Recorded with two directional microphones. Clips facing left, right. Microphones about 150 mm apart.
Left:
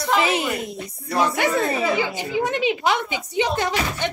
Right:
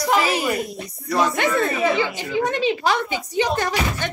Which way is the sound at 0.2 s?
25° left (ahead or behind).